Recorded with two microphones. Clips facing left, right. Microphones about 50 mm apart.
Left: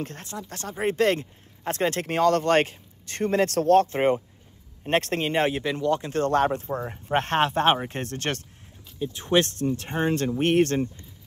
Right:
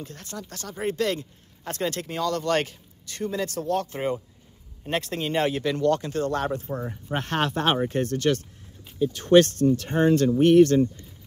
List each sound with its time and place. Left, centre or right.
0.0 s speech: left
5.3 s speech: left
6.0 s speech: left
9.0 s speech: centre
9.6 s speech: left
10.4 s speech: left